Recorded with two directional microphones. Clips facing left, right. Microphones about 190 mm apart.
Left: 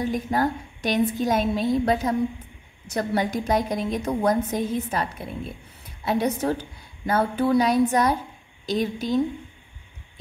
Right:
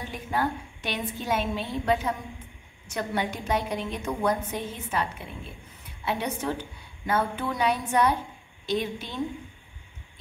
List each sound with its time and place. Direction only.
0.0 s a woman's voice: 40° left (ahead or behind)